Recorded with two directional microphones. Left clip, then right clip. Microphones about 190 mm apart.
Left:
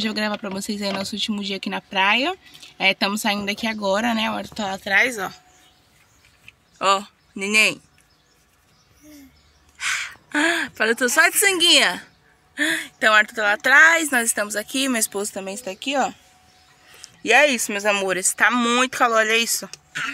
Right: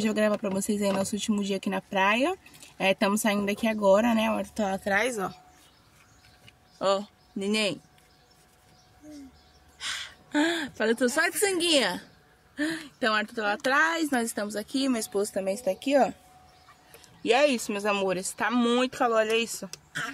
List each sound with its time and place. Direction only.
0.0 s speech: 5° right (ahead or behind)
6.8 s speech: 10° left (ahead or behind)
9.8 s speech: 15° left (ahead or behind)
15.3 s speech: 65° left (ahead or behind)
17.0 s speech: 10° left (ahead or behind)